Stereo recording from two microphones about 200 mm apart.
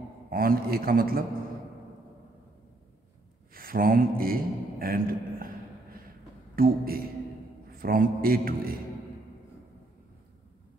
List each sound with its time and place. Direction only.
0.3 s a man's voice: 45° right (ahead or behind)
3.5 s a man's voice: 45° right (ahead or behind)
6.5 s a man's voice: 45° right (ahead or behind)